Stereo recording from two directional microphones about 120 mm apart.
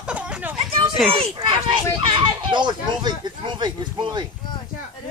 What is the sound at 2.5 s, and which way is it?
Speech, 40° right (ahead or behind).